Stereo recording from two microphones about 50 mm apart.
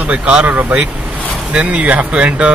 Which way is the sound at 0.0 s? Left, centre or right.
Right.